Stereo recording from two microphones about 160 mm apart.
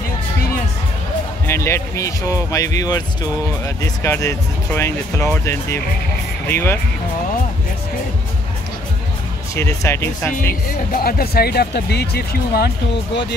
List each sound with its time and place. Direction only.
1.5 s speech: 15° left (ahead or behind)
9.6 s speech: 15° left (ahead or behind)
10.9 s speech: 70° left (ahead or behind)